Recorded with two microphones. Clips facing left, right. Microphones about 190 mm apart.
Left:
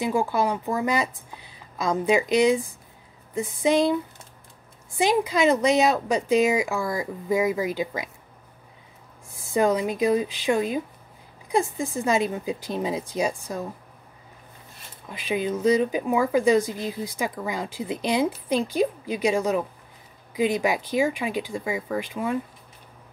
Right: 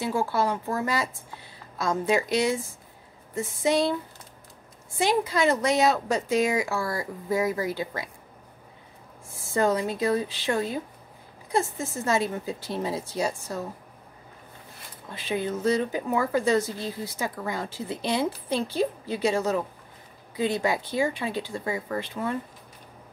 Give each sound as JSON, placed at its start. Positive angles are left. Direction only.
{"t": 0.0, "sound": "speech", "side_deg": 15}
{"t": 4.9, "sound": "speech", "side_deg": 15}
{"t": 9.5, "sound": "speech", "side_deg": 15}
{"t": 15.0, "sound": "speech", "side_deg": 15}